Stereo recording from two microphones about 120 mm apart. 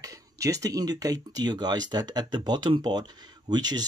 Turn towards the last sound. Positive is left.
turn(degrees=-35)  # may be behind; listen again after turning